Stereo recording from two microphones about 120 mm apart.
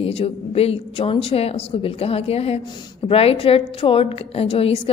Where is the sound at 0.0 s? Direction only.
55° left (ahead or behind).